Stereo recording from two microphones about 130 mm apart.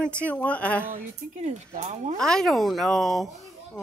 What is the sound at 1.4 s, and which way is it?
Speech, 65° right (ahead or behind).